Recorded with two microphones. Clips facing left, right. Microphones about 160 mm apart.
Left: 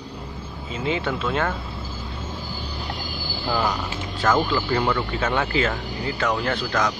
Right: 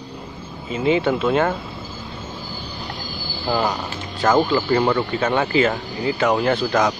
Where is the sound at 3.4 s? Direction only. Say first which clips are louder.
Right 3 dB; 20° right (ahead or behind).